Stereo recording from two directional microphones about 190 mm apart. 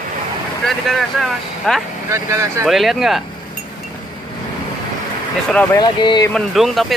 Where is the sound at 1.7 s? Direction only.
5° left (ahead or behind).